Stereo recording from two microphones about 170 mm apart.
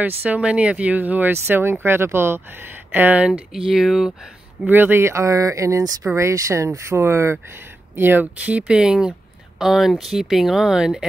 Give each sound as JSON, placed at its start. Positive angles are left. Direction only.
{"t": 0.2, "sound": "speech", "side_deg": -10}